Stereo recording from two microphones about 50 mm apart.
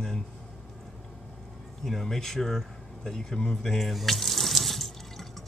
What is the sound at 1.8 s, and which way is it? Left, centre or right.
Speech, centre.